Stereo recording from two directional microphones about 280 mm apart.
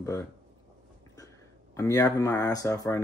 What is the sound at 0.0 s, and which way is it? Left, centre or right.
Speech, centre.